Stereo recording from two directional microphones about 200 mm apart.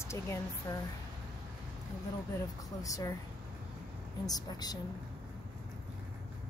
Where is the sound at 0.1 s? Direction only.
15° left (ahead or behind).